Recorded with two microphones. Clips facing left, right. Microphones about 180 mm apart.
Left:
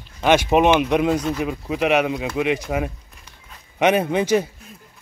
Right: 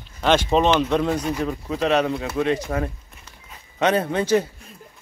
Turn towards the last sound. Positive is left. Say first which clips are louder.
# left 1 dB
turn(degrees=15)  # may be behind; listen again after turning